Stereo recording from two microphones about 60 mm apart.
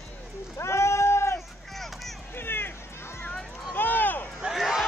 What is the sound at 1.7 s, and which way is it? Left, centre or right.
Vehicle, centre.